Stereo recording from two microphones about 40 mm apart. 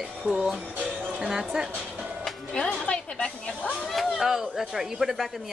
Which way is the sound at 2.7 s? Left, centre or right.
Left.